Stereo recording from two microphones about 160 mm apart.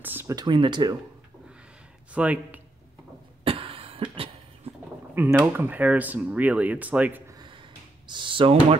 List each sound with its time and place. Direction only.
0.0 s a sound: 10° right (ahead or behind)
0.4 s speech: 30° right (ahead or behind)
2.1 s speech: 10° right (ahead or behind)
3.4 s cough: 35° right (ahead or behind)
5.1 s speech: 10° right (ahead or behind)
7.3 s a sound: 30° right (ahead or behind)
8.1 s speech: 30° right (ahead or behind)